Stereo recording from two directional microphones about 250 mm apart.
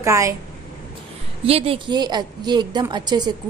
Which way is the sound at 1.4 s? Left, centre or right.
Right.